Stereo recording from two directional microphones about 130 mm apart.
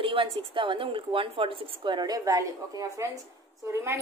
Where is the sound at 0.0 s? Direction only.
45° right (ahead or behind).